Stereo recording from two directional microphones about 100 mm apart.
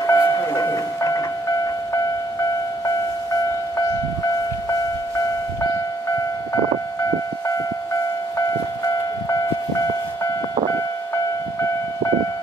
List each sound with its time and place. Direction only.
0.0 s train: 35° left (ahead or behind)